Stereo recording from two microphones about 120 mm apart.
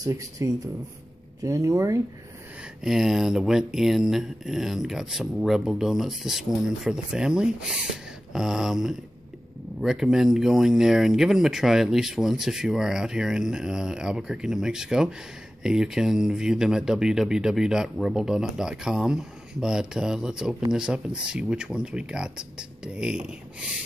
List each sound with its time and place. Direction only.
0.0 s speech: 25° right (ahead or behind)
2.8 s speech: 5° right (ahead or behind)